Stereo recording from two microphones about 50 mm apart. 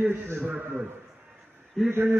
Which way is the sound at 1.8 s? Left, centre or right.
Centre.